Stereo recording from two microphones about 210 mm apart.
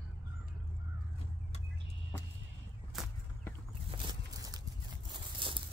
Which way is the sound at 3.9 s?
20° right (ahead or behind).